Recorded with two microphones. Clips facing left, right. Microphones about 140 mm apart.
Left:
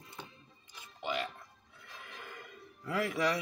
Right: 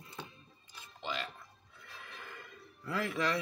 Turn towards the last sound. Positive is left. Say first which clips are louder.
# left 2 dB
turn(degrees=15)  # may be behind; listen again after turning